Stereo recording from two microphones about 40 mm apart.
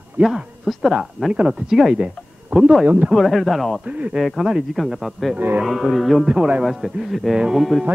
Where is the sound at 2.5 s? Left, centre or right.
Right.